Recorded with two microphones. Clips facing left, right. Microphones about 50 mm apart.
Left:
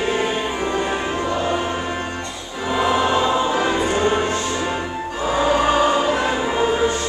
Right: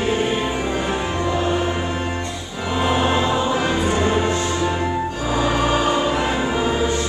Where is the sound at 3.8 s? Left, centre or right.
Left.